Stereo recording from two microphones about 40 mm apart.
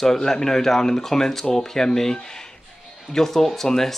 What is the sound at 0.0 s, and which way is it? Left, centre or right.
Speech, centre.